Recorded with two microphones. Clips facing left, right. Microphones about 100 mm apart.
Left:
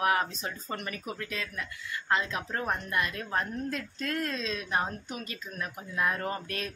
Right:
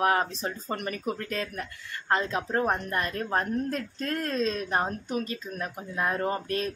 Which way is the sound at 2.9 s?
40° right (ahead or behind).